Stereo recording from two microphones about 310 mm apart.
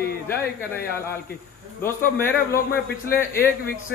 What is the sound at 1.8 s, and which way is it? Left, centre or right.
Speech, centre.